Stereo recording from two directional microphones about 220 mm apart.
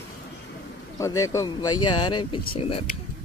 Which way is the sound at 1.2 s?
15° left (ahead or behind).